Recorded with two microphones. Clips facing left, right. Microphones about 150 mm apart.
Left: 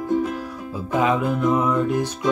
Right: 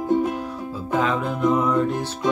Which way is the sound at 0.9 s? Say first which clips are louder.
Left 3 dB; 15° left (ahead or behind).